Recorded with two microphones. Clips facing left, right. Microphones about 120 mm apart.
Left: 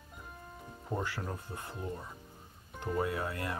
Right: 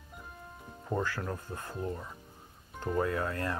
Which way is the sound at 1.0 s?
20° left (ahead or behind).